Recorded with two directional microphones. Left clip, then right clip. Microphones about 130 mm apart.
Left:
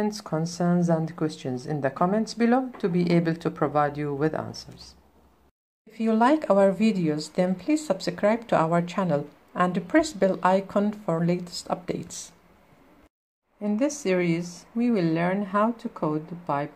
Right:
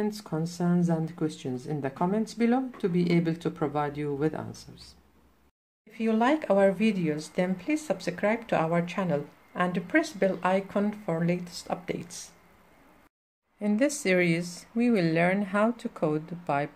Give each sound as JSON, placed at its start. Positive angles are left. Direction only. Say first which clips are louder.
{"t": 0.0, "sound": "speech", "louder": "left 4 dB", "side_deg": -15}
{"t": 5.9, "sound": "speech", "louder": "left 4 dB", "side_deg": 5}
{"t": 13.6, "sound": "speech", "louder": "even", "side_deg": -30}